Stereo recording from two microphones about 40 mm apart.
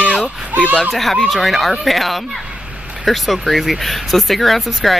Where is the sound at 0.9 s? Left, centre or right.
Centre.